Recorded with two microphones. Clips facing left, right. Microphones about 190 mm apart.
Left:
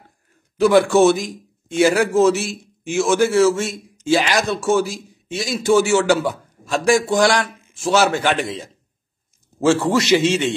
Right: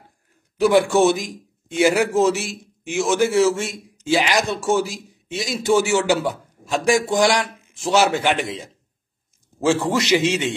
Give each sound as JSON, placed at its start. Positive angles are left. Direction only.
{"t": 0.6, "sound": "speech", "side_deg": -15}
{"t": 9.7, "sound": "speech", "side_deg": -15}